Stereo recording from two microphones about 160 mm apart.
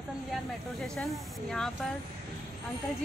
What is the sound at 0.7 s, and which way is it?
Speech, 5° left (ahead or behind).